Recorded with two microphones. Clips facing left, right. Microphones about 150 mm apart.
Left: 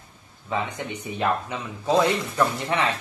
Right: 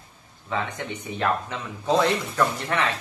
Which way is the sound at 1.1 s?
5° left (ahead or behind).